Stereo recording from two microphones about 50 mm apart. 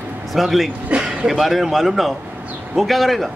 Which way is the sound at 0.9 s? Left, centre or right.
Right.